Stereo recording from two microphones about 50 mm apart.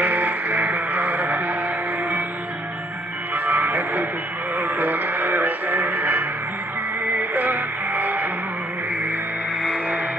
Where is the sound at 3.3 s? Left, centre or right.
Right.